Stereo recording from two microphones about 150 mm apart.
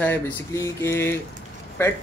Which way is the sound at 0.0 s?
15° left (ahead or behind).